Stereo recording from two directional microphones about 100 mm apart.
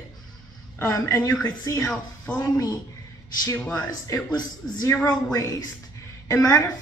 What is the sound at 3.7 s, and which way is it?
A woman's voice, 45° left (ahead or behind).